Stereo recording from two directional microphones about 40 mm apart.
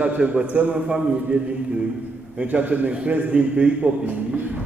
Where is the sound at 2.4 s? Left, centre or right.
Right.